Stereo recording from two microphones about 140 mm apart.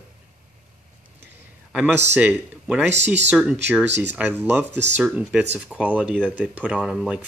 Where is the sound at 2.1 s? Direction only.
10° right (ahead or behind).